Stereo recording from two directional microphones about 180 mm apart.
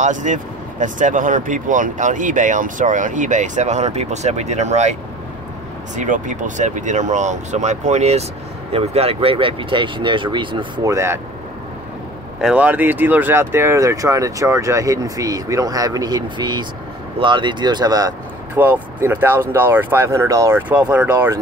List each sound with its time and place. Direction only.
0.0 s speech: 45° right (ahead or behind)
5.9 s speech: 45° right (ahead or behind); by 10.9 s 25° right (ahead or behind)
10.9 s speech: 15° right (ahead or behind)
12.4 s speech: 5° right (ahead or behind)